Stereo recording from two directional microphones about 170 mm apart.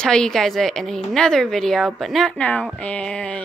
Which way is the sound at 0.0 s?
5° left (ahead or behind).